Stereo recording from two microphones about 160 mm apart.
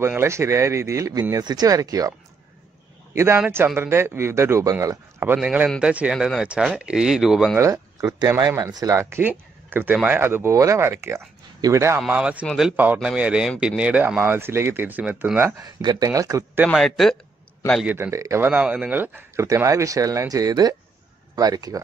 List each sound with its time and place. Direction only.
0.0 s speech: 15° right (ahead or behind)
3.1 s a sound: 15° right (ahead or behind)
3.3 s speech: 10° right (ahead or behind)
7.5 s speech: 20° right (ahead or behind)
12.0 s speech: 5° right (ahead or behind)
16.6 s speech: centre (ahead or behind)
17.8 s speech: 10° right (ahead or behind)